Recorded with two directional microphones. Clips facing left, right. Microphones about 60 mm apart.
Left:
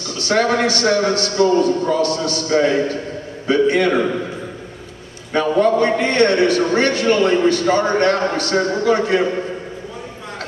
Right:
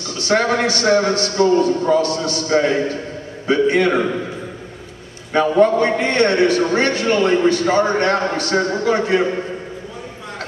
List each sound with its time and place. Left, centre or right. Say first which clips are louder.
0.2 s a man's voice: even; centre
5.3 s a man's voice: right 1 dB; centre